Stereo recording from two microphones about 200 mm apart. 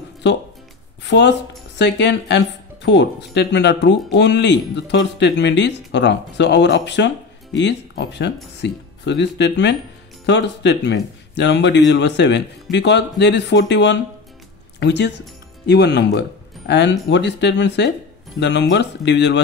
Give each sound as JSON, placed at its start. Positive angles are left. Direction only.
{"t": 1.0, "sound": "speech", "side_deg": 60}